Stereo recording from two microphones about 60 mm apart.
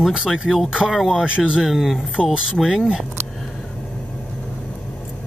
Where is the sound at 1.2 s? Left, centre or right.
Centre.